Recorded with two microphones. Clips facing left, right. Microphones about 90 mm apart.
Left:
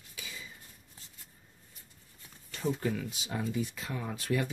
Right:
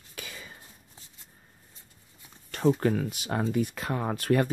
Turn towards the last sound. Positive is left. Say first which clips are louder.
# right 7 dB
turn(degrees=-55)  # may be behind; listen again after turning